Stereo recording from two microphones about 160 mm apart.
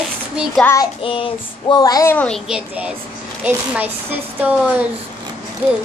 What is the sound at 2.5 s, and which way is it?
Speech, 5° right (ahead or behind).